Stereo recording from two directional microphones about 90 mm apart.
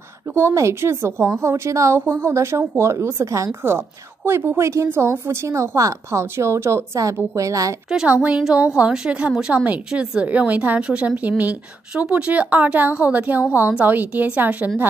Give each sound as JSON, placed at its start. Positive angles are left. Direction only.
{"t": 0.3, "sound": "a woman's voice", "side_deg": -30}
{"t": 8.1, "sound": "a woman's voice", "side_deg": -15}